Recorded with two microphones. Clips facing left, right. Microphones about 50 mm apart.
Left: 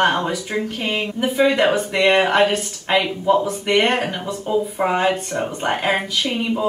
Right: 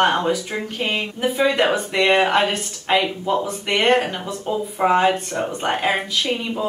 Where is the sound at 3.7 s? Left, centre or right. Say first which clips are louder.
Right 1 dB; centre.